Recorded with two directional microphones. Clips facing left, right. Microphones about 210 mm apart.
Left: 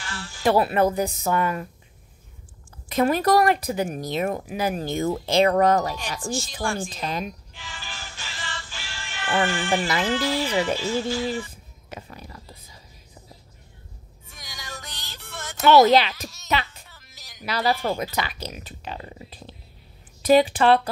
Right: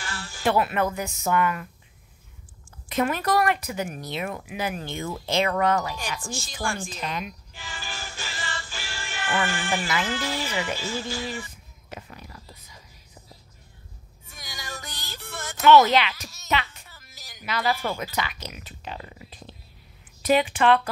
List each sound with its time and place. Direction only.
0.0 s music: centre (ahead or behind)
0.5 s speech: 35° left (ahead or behind)
3.0 s speech: 35° left (ahead or behind)
7.5 s music: 5° right (ahead or behind)
9.5 s speech: centre (ahead or behind)
14.3 s music: 5° right (ahead or behind)
15.6 s speech: 35° left (ahead or behind)
16.9 s music: 5° right (ahead or behind)
17.4 s speech: 35° left (ahead or behind)
20.2 s speech: 35° left (ahead or behind)